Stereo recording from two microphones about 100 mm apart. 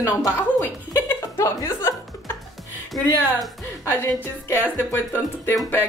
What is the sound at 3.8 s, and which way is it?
Speech, 20° left (ahead or behind).